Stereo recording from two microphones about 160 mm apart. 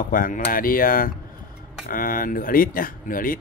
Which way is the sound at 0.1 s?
60° left (ahead or behind).